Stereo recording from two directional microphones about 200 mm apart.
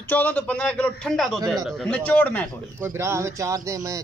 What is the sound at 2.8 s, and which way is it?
A man's voice, 10° right (ahead or behind).